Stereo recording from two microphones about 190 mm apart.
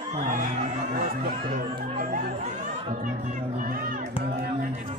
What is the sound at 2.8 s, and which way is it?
Music, 40° right (ahead or behind).